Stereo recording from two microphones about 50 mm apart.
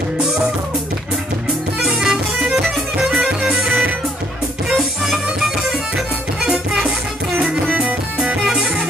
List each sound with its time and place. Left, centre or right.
1.8 s music: centre